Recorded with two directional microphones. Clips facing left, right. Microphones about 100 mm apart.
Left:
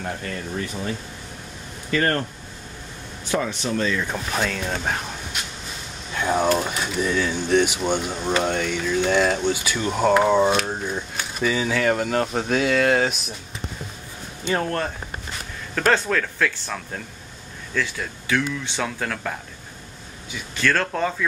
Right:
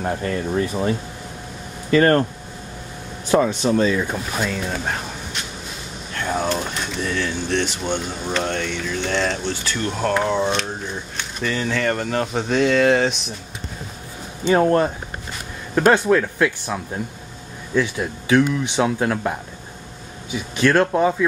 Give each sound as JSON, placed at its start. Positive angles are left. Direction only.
{"t": 1.9, "sound": "speech", "side_deg": -35}
{"t": 3.3, "sound": "speech", "side_deg": -40}
{"t": 3.7, "sound": "speech", "side_deg": -20}
{"t": 4.1, "sound": "speech", "side_deg": -5}
{"t": 14.5, "sound": "speech", "side_deg": -20}
{"t": 20.5, "sound": "speech", "side_deg": -15}